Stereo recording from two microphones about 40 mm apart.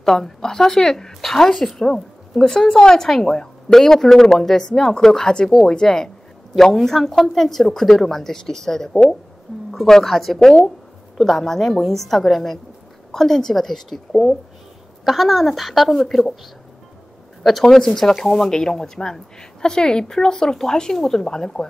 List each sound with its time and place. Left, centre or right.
0.0 s a woman's voice: centre
17.4 s speech: centre